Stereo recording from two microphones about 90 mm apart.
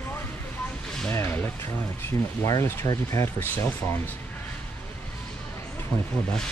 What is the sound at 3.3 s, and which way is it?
Speech, 25° left (ahead or behind).